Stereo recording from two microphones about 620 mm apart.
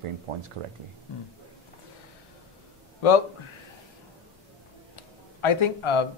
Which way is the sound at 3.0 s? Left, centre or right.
Left.